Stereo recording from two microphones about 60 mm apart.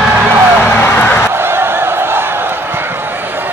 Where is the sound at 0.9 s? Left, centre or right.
Left.